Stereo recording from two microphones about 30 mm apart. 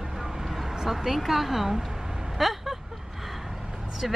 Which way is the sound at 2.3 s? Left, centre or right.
Centre.